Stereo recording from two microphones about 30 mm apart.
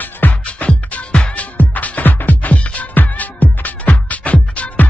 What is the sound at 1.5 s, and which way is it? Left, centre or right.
Music, left.